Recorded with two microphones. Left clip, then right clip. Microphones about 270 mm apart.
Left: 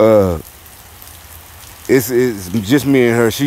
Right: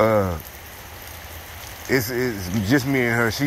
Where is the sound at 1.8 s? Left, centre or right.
Left.